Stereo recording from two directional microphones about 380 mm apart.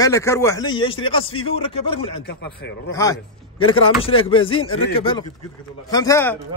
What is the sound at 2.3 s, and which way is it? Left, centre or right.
Speech, left.